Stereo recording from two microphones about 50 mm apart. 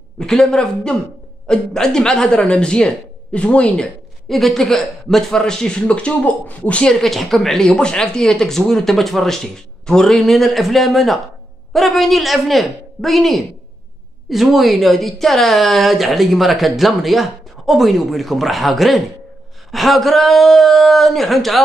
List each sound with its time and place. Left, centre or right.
0.2 s speech: centre
4.3 s a woman's voice: centre; by 6.8 s left
6.8 s speech: centre
7.1 s a woman's voice: centre